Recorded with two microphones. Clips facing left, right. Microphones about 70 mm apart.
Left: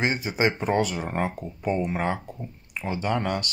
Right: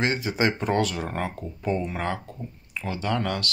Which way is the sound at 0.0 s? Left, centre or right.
Centre.